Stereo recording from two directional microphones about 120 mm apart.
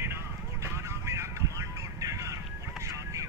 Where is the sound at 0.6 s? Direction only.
25° right (ahead or behind).